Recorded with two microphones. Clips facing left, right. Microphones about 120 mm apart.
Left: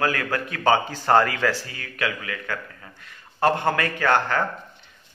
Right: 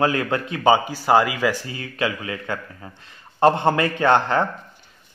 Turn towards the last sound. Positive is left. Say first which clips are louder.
# right 4 dB
turn(degrees=-25)  # may be behind; listen again after turning